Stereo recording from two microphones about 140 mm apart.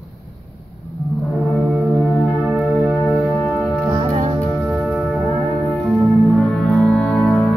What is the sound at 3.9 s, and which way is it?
Music, 45° right (ahead or behind).